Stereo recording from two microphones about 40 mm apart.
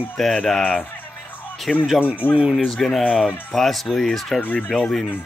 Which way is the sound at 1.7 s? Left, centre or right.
Centre.